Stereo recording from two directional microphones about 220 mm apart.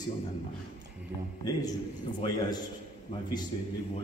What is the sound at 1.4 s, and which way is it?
Speech, 15° left (ahead or behind).